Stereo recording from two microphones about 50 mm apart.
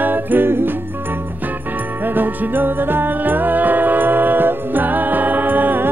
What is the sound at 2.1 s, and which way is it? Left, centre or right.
Music, right.